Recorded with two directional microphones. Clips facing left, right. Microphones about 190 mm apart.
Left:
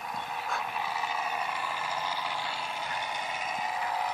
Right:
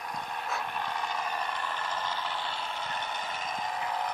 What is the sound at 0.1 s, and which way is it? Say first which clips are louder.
Vehicle: even; 5° left (ahead or behind).